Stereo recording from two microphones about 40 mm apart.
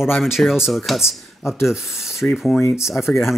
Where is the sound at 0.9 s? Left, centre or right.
Centre.